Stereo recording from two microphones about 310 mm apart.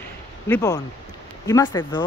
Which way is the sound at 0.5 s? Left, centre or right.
Centre.